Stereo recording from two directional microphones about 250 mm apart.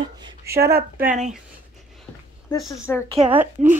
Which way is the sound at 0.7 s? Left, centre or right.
Right.